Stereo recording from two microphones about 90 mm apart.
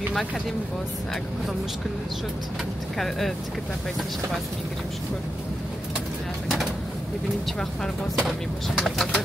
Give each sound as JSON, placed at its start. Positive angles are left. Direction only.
{"t": 3.0, "sound": "speech", "side_deg": 5}
{"t": 7.8, "sound": "speech", "side_deg": 5}